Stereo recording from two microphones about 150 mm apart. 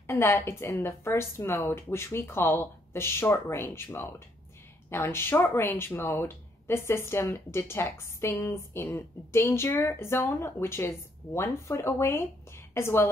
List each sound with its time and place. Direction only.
0.0 s speech: 15° left (ahead or behind)